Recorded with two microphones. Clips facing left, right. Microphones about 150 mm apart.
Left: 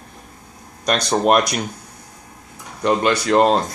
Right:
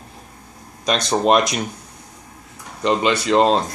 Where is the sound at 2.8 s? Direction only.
Centre (ahead or behind).